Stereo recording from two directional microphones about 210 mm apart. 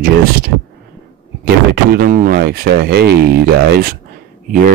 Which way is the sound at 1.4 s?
45° right (ahead or behind).